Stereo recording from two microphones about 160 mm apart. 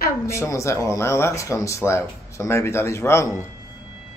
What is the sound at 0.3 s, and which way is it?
Speech, 20° left (ahead or behind).